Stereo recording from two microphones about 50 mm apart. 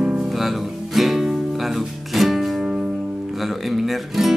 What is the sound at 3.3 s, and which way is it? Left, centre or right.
Speech, centre.